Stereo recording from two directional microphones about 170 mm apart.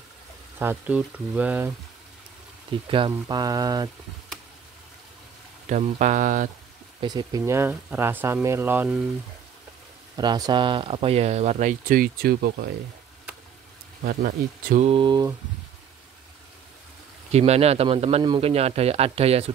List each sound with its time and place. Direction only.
0.6 s speech: 10° right (ahead or behind)
2.9 s speech: 25° right (ahead or behind)
5.7 s speech: 45° right (ahead or behind)
7.0 s speech: 25° right (ahead or behind); by 9.0 s 10° right (ahead or behind)
10.1 s speech: 25° right (ahead or behind); by 11.7 s 40° right (ahead or behind)
11.9 s speech: 60° right (ahead or behind)
14.0 s speech: 60° right (ahead or behind)
14.8 s speech: 30° right (ahead or behind)
17.3 s a man's voice: 40° right (ahead or behind)